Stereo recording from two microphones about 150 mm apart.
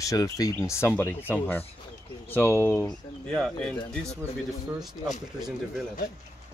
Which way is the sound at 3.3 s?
5° left (ahead or behind).